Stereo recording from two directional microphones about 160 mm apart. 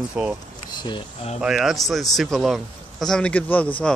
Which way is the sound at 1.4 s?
5° right (ahead or behind).